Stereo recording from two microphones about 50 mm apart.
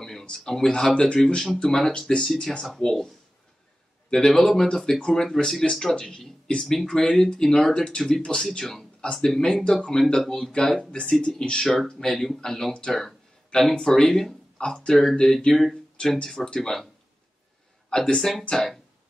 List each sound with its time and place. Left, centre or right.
0.0 s speech: centre
2.8 s speech: centre
4.1 s speech: centre
12.1 s speech: centre
17.8 s speech: centre